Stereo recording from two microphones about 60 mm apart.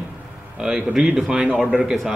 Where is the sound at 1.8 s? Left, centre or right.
Centre.